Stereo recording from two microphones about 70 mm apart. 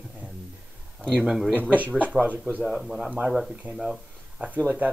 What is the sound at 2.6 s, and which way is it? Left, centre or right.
Speech, centre.